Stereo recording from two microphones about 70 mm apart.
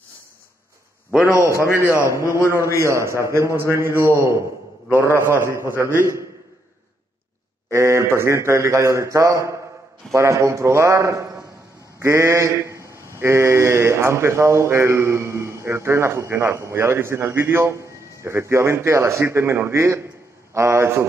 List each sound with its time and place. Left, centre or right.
1.6 s a man's voice: left
2.5 s speech: right
7.7 s a man's voice: right